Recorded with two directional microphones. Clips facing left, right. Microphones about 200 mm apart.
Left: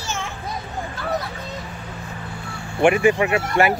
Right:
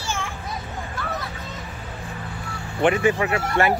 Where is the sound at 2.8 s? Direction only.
10° left (ahead or behind).